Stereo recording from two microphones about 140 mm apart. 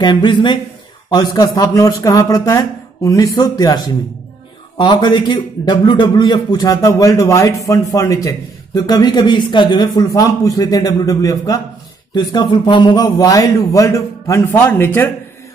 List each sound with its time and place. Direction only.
0.0 s a man's voice: 35° left (ahead or behind); by 15.0 s 15° left (ahead or behind)